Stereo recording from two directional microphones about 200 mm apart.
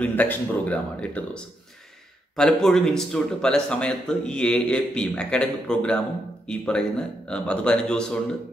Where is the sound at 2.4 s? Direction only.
5° left (ahead or behind).